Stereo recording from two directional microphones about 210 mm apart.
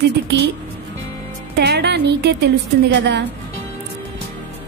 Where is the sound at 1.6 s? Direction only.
55° right (ahead or behind).